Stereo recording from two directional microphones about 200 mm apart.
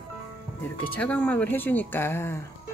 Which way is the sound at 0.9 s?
5° left (ahead or behind).